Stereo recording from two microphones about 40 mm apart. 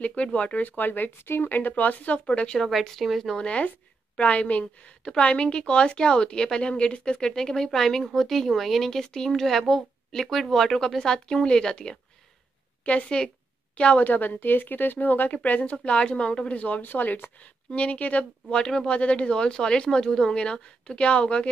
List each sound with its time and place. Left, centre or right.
0.0 s speech: left
1.5 s speech: left
2.2 s speech: left
2.7 s speech: centre
3.3 s speech: left
5.0 s speech: left
12.9 s speech: left
13.7 s a woman's voice: left
14.0 s speech: left
16.8 s speech: left
17.4 s speech: left
18.6 s speech: centre
18.9 s speech: left